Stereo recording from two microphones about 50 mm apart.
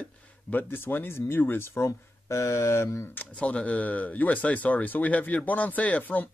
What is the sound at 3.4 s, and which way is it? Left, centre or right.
Speech, left.